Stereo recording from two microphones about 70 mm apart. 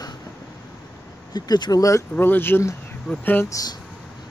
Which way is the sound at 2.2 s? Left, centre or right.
Left.